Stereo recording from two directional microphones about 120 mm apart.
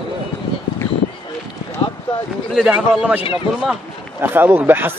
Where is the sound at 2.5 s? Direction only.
5° right (ahead or behind).